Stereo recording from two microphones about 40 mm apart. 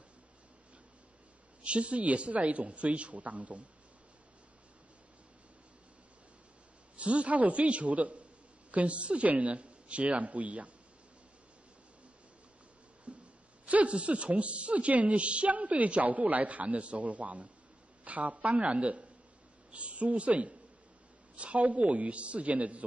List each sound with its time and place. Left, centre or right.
1.6 s a woman's voice: right
7.0 s a woman's voice: right
13.1 s hiccup: right
13.7 s a woman's voice: right